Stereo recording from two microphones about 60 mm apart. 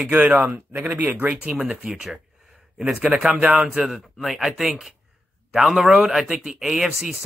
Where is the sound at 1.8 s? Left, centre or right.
Centre.